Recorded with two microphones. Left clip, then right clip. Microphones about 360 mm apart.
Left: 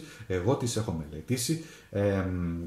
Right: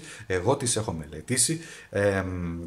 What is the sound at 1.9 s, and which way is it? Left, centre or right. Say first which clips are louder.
Speech: right 4 dB; right.